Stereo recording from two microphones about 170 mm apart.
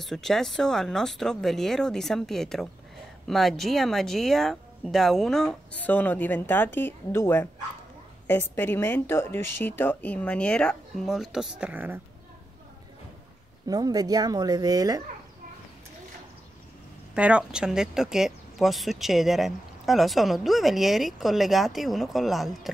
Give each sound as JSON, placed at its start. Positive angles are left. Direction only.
{"t": 0.0, "sound": "a woman's voice", "side_deg": 0}
{"t": 13.7, "sound": "speech", "side_deg": -20}
{"t": 17.1, "sound": "speech", "side_deg": -5}